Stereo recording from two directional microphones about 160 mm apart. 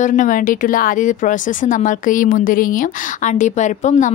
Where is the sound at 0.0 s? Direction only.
55° left (ahead or behind).